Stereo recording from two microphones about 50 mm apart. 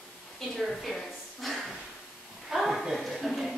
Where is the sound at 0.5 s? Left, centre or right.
Centre.